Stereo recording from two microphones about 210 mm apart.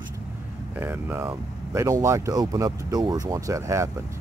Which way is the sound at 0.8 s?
10° right (ahead or behind).